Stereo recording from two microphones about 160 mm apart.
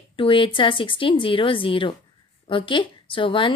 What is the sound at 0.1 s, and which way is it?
Speech, 35° left (ahead or behind).